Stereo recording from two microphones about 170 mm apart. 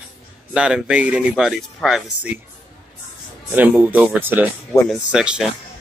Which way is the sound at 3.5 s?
10° right (ahead or behind).